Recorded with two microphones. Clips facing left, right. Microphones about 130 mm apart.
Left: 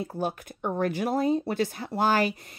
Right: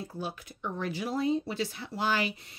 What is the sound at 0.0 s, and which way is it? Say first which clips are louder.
Speech: left 7 dB; 50° left (ahead or behind).